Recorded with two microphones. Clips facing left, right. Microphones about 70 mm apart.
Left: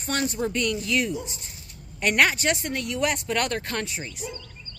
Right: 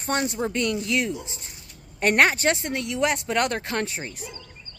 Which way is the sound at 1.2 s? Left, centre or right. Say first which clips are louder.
Left 1 dB; right.